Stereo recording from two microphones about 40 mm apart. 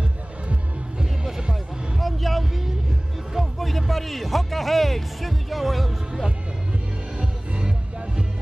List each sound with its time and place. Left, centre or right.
1.5 s music: centre
7.2 s music: right